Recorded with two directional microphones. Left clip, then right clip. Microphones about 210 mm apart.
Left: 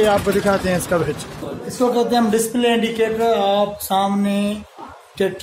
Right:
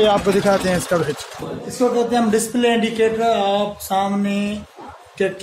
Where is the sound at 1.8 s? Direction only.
25° left (ahead or behind).